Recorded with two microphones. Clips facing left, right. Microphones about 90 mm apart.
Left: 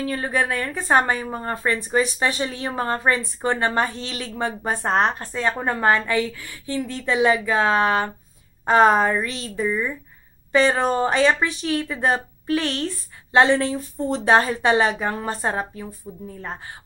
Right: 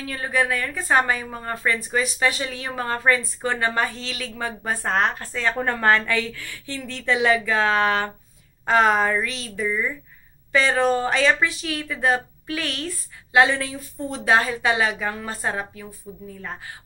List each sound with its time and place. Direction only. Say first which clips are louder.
0.0 s a woman's voice: left 1 dB; 30° left (ahead or behind)